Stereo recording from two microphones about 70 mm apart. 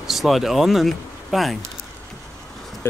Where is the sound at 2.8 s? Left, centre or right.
Left.